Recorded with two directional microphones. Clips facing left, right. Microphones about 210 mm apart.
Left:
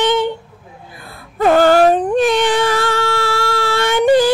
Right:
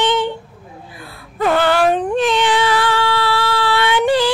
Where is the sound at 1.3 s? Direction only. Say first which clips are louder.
Left 5 dB; 45° left (ahead or behind).